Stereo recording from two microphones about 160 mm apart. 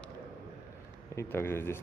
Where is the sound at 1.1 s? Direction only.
15° left (ahead or behind).